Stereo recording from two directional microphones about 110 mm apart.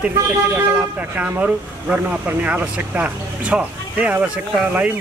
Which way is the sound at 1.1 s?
10° right (ahead or behind).